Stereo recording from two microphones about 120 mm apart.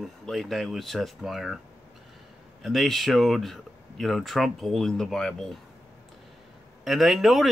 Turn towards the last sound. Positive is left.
turn(degrees=0)  # may be behind; listen again after turning